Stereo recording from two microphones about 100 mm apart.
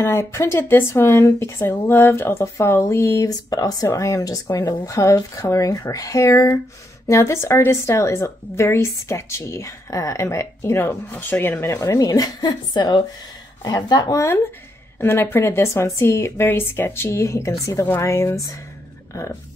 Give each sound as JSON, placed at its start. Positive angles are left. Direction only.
{"t": 0.0, "sound": "a woman's voice", "side_deg": 25}
{"t": 3.3, "sound": "a woman's voice", "side_deg": 40}
{"t": 14.1, "sound": "a woman's voice", "side_deg": 25}